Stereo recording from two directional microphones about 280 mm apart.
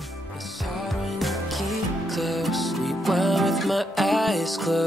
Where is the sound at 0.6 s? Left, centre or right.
Centre.